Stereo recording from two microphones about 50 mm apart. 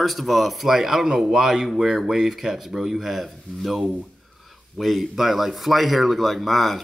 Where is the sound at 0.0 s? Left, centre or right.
Centre.